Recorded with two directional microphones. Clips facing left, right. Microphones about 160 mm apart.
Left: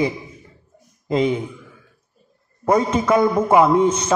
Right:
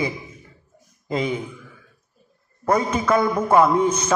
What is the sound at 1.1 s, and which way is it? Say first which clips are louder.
Speech: left 5 dB; 25° left (ahead or behind).